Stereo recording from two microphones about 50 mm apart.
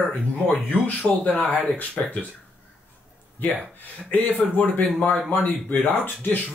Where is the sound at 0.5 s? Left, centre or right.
Left.